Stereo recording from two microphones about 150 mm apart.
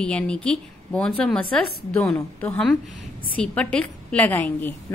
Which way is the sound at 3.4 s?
10° left (ahead or behind).